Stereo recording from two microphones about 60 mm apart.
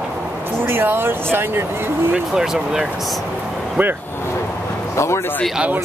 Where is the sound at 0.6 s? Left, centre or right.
Right.